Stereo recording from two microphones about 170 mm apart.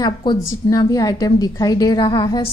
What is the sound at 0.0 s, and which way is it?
Speech, 25° left (ahead or behind).